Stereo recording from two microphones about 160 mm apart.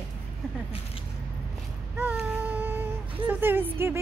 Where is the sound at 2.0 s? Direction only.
10° right (ahead or behind).